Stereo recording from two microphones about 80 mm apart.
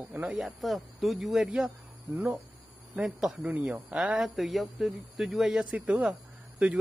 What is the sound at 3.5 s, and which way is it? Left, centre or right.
Speech, centre.